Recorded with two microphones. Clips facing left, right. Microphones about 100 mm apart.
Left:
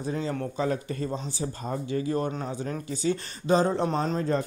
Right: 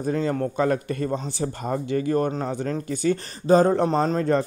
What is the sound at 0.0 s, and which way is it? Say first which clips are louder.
Speech: right 6 dB; 50° right (ahead or behind).